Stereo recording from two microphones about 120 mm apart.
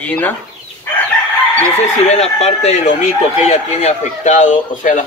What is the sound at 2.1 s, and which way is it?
Speech, 65° left (ahead or behind).